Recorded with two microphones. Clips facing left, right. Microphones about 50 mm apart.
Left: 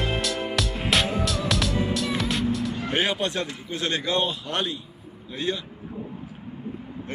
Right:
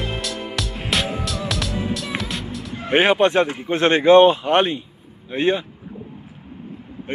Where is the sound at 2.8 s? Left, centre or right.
Right.